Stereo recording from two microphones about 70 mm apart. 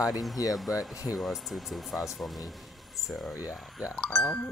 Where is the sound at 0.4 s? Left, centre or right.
Left.